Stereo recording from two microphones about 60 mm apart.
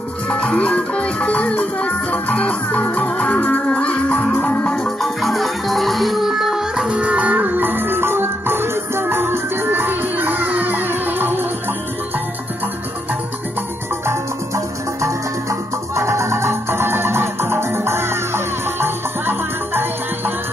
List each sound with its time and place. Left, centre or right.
0.3 s music: centre
4.7 s music: centre; by 11.4 s right
14.0 s music: right